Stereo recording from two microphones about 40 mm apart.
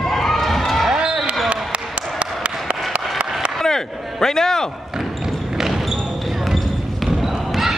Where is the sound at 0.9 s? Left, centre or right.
Right.